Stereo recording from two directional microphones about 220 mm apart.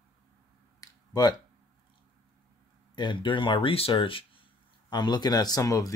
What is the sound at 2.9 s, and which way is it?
Speech, 20° left (ahead or behind).